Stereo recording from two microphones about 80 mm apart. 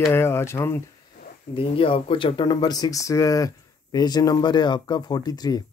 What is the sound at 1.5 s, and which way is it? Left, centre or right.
Speech, left.